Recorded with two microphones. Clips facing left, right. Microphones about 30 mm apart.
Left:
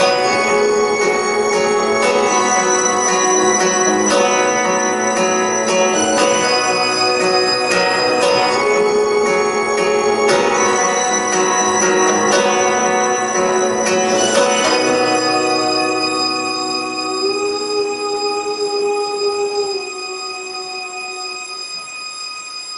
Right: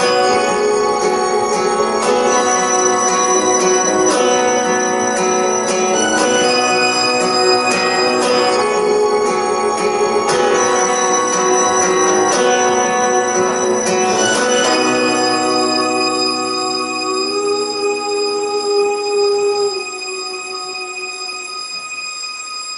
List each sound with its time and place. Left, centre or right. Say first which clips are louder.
0.1 s music: right 1 dB; centre
0.9 s music: even; centre
6.3 s music: right 2 dB; centre
11.3 s music: right 1 dB; centre
12.5 s music: right 1 dB; centre
13.9 s music: even; centre
14.4 s bell: even; centre
14.7 s music: even; centre